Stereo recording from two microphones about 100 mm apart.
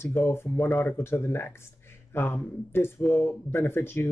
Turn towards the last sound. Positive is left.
turn(degrees=25)  # may be behind; listen again after turning